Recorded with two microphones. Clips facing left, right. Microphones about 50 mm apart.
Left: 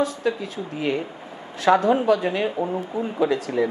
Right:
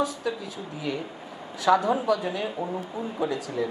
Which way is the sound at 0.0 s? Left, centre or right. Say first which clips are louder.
Left 5 dB; left.